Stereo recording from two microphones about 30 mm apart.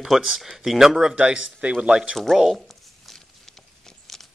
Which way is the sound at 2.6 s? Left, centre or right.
Centre.